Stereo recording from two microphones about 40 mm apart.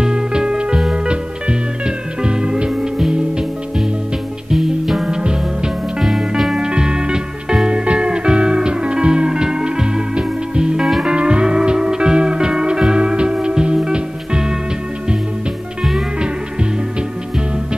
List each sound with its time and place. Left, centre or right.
0.0 s music: centre
2.7 s music: centre
4.5 s music: centre
5.0 s music: right
5.9 s music: centre
6.6 s music: right
10.8 s music: centre
11.1 s music: right